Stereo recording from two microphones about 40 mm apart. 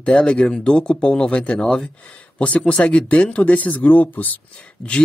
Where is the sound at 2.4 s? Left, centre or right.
Left.